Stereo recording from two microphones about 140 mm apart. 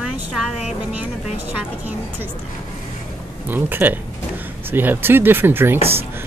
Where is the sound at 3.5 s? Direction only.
15° right (ahead or behind).